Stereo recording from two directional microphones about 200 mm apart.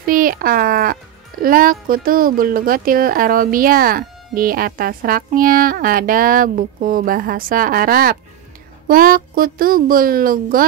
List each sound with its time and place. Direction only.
0.0 s speech: 45° right (ahead or behind)